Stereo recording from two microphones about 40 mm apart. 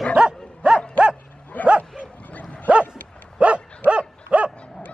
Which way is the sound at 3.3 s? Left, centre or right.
Right.